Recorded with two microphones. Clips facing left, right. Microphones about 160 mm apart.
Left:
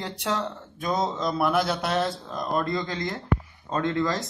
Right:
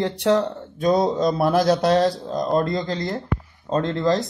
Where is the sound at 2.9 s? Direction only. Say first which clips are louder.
Right 3 dB; 35° right (ahead or behind).